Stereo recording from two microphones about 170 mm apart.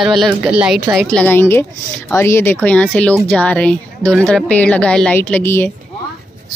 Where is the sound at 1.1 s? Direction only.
10° left (ahead or behind).